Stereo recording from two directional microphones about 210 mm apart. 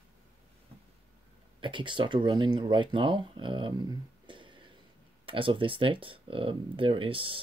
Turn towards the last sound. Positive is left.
turn(degrees=-25)  # may be behind; listen again after turning